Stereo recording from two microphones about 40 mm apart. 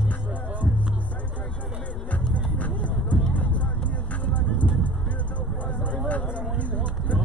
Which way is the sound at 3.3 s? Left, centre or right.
Left.